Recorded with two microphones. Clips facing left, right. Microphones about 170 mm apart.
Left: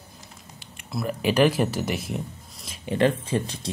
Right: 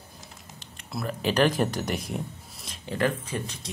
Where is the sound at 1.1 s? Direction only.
10° left (ahead or behind).